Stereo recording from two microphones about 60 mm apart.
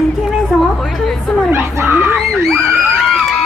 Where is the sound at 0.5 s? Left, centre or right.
Centre.